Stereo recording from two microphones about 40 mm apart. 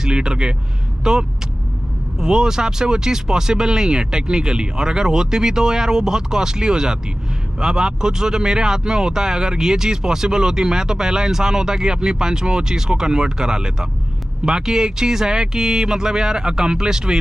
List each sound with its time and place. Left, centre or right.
0.0 s a man's voice: centre